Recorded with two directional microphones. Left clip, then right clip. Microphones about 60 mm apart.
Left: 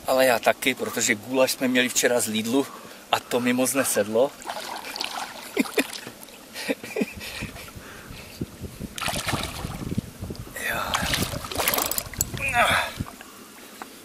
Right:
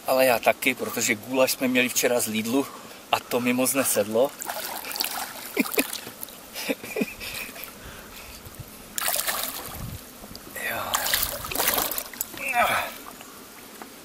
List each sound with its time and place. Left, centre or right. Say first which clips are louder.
0.0 s speech: even; centre
4.5 s trickle: even; right
4.9 s boat: right 1 dB; right
5.5 s boat: left 1 dB; right
6.5 s a sound: left 1 dB; centre
8.9 s boat: even; right
10.6 s whispering: left 2 dB; left
10.9 s a sound: left 1 dB; right
11.5 s boat: left 1 dB; centre
12.4 s a sound: left 2 dB; left